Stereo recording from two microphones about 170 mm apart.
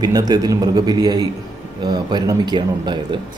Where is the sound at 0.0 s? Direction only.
20° right (ahead or behind).